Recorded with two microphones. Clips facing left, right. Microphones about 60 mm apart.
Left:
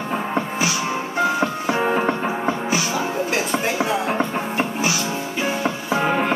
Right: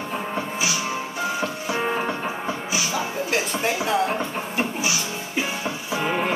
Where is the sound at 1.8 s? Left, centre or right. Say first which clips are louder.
Left 4 dB; left.